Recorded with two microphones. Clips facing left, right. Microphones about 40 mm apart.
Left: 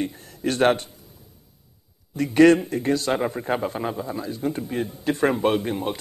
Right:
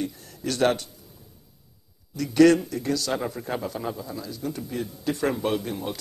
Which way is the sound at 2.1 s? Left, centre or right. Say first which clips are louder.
Left 2 dB; left.